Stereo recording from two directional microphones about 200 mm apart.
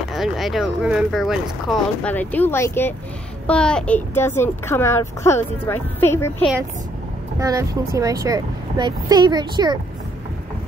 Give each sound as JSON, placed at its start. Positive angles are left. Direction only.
{"t": 0.1, "sound": "speech", "side_deg": 0}
{"t": 7.3, "sound": "speech", "side_deg": -15}